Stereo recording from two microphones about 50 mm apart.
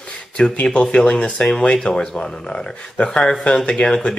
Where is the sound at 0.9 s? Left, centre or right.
Left.